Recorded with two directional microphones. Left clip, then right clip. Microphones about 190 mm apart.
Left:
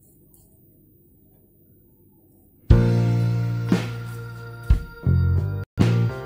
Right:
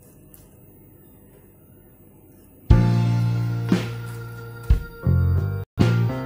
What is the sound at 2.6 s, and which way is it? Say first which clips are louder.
Music: left 1 dB; centre (ahead or behind).